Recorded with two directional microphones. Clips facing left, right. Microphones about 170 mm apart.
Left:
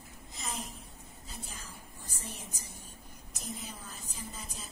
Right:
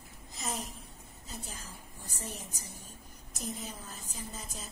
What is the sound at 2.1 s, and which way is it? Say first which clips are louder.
A woman's voice: right 3 dB; 40° right (ahead or behind).